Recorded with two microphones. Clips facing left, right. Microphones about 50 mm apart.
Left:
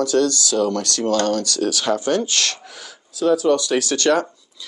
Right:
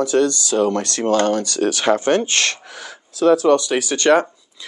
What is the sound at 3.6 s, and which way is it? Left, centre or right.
Speech, right.